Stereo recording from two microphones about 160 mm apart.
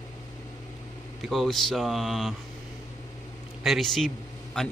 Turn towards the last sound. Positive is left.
turn(degrees=5)  # may be behind; listen again after turning